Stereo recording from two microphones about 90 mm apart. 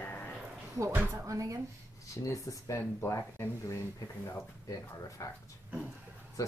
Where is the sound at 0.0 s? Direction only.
20° left (ahead or behind).